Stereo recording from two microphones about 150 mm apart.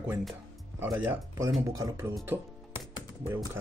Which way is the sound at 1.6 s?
20° right (ahead or behind).